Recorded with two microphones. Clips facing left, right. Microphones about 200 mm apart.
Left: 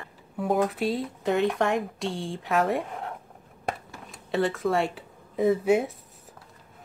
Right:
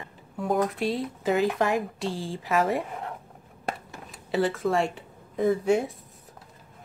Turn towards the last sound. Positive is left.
turn(degrees=0)  # may be behind; listen again after turning